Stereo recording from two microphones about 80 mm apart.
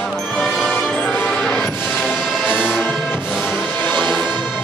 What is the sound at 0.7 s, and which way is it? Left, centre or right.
Music, centre.